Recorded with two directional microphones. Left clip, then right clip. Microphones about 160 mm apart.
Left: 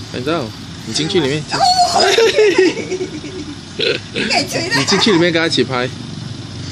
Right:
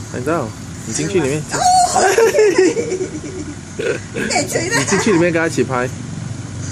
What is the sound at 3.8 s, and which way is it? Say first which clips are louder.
Speech: left 3 dB; 5° left (ahead or behind).